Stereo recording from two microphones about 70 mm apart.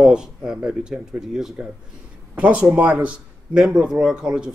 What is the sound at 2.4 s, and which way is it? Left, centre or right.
Speech, centre.